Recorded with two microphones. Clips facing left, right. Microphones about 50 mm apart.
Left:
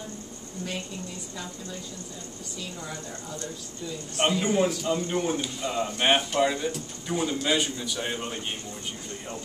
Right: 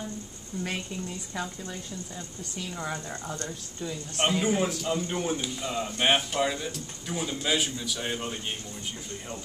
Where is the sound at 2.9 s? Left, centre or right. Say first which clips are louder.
Right 2 dB; right.